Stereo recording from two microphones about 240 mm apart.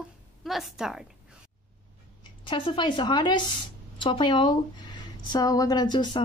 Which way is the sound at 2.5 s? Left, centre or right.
Centre.